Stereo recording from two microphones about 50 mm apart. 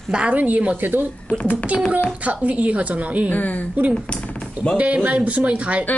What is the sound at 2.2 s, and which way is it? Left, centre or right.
A woman's voice, right.